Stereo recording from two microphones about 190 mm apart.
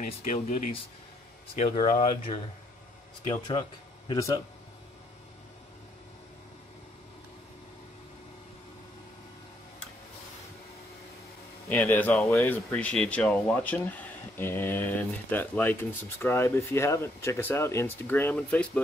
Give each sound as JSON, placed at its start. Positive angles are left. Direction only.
{"t": 0.0, "sound": "speech", "side_deg": 45}
{"t": 1.5, "sound": "speech", "side_deg": 35}
{"t": 4.1, "sound": "speech", "side_deg": 20}
{"t": 11.7, "sound": "speech", "side_deg": 10}